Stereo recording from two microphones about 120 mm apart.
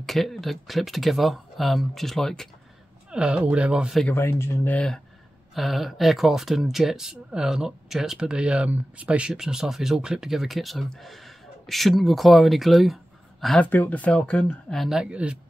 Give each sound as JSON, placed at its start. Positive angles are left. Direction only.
{"t": 0.0, "sound": "speech", "side_deg": 0}
{"t": 3.1, "sound": "speech", "side_deg": -10}
{"t": 4.1, "sound": "speech", "side_deg": 20}
{"t": 4.7, "sound": "speech", "side_deg": 5}
{"t": 13.6, "sound": "speech", "side_deg": 15}